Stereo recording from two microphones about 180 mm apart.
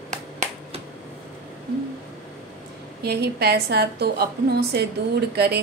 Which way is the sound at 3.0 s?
65° right (ahead or behind).